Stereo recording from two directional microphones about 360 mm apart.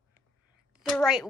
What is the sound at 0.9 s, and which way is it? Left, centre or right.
Speech, centre.